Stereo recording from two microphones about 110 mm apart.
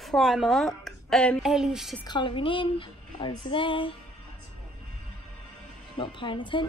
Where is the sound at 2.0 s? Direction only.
45° left (ahead or behind).